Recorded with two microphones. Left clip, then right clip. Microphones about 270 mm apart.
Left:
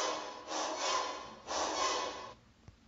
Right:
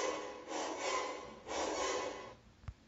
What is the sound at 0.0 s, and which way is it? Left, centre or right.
Rub, centre.